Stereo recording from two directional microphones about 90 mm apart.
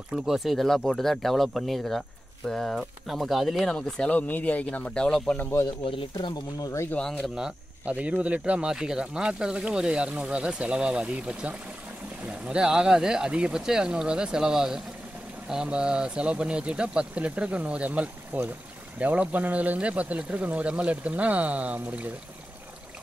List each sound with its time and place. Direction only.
0.1 s speech: centre (ahead or behind)
5.4 s speech: 25° left (ahead or behind)
6.1 s speech: 50° left (ahead or behind)
7.0 s speech: 15° left (ahead or behind)
7.3 s speech: 10° right (ahead or behind)